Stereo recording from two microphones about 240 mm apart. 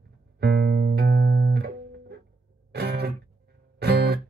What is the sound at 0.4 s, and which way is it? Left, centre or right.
Music, right.